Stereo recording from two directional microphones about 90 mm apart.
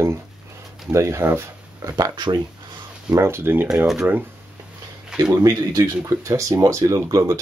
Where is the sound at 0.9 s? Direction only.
30° right (ahead or behind); by 2.3 s 50° right (ahead or behind).